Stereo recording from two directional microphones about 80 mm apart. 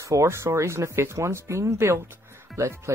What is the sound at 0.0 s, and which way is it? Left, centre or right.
Speech, right.